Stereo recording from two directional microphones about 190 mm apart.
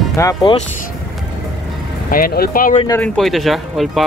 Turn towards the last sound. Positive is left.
turn(degrees=0)  # may be behind; listen again after turning